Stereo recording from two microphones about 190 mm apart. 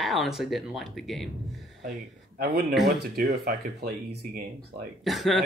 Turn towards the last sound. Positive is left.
turn(degrees=0)  # may be behind; listen again after turning